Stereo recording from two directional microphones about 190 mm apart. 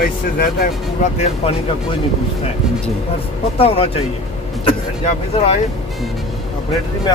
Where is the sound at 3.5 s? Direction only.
30° left (ahead or behind).